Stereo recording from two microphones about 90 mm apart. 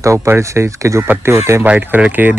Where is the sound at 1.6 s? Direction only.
15° right (ahead or behind).